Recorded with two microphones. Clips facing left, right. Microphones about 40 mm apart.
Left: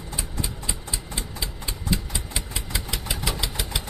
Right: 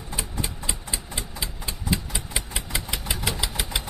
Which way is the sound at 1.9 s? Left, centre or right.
Centre.